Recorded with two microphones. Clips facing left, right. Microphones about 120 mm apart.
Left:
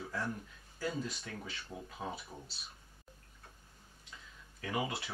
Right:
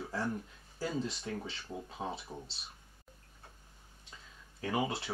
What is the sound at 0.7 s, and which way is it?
Speech, 30° right (ahead or behind).